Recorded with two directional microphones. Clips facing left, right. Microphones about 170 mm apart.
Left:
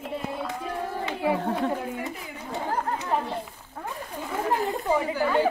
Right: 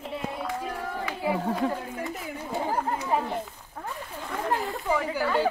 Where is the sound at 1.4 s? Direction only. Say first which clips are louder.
Even; centre (ahead or behind).